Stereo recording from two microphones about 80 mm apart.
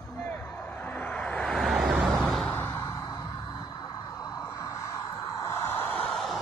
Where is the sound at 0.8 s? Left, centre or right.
Centre.